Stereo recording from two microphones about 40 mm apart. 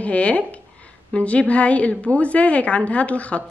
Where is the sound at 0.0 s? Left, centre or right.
Left.